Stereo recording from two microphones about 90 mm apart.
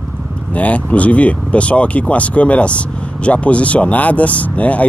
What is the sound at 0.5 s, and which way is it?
Speech, 15° left (ahead or behind).